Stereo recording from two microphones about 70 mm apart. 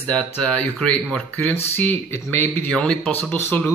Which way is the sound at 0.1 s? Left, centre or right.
Centre.